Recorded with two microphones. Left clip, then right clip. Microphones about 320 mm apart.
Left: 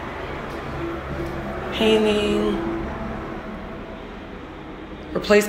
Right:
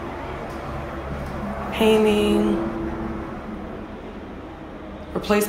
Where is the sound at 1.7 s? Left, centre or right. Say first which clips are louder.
Right 1 dB; centre.